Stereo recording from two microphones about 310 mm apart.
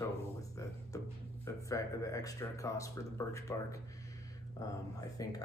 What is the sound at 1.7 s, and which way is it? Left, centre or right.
Speech, centre.